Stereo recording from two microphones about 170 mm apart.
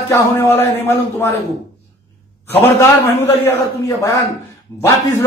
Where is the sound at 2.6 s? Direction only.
15° left (ahead or behind).